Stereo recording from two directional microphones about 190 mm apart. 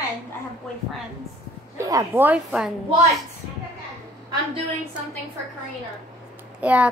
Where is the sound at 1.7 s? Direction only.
15° right (ahead or behind).